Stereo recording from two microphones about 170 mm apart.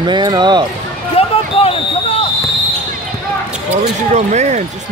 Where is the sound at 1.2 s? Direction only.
35° left (ahead or behind).